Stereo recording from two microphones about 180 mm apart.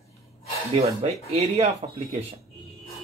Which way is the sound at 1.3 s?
35° right (ahead or behind).